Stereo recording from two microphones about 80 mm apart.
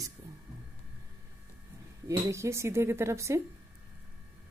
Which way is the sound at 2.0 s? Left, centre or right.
Right.